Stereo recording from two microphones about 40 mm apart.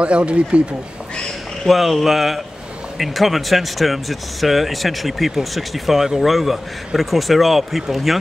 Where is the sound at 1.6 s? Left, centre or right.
Centre.